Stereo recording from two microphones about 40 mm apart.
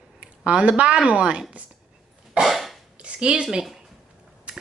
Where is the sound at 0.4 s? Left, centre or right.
Right.